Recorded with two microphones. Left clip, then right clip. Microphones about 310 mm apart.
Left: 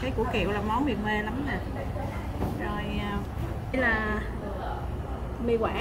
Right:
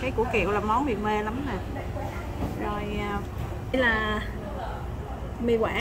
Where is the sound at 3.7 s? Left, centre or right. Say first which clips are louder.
Right 2 dB; right.